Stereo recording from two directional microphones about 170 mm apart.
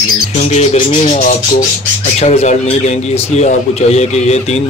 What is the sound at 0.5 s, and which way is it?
Speech, 40° left (ahead or behind).